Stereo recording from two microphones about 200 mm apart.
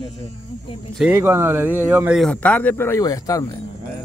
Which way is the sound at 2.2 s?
5° left (ahead or behind).